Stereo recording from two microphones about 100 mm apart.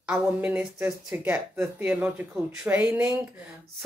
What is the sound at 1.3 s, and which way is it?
Speech, 20° right (ahead or behind).